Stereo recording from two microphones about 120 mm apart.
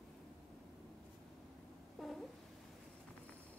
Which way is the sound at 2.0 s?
Centre (ahead or behind).